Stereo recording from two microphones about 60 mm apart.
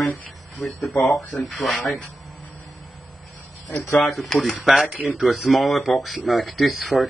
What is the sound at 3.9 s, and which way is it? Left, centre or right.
Speech, centre.